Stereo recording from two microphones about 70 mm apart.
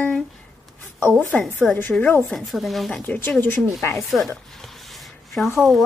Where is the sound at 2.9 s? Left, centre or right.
Left.